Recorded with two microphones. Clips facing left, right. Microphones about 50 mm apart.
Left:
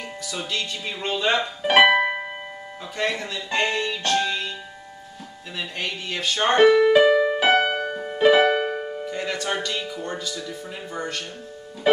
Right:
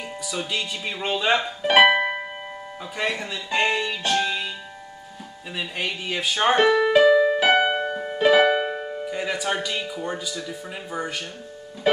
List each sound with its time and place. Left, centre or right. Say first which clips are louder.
0.3 s speech: right 1 dB; centre
1.6 s music: left 1 dB; centre
3.0 s speech: left 1 dB; centre
5.6 s speech: right 1 dB; centre
7.1 s music: right 2 dB; centre
7.5 s music: even; centre
8.5 s speech: even; centre